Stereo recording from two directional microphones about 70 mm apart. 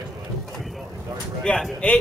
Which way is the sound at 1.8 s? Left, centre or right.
Centre.